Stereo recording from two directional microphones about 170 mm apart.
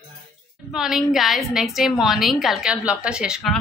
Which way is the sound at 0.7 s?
5° right (ahead or behind).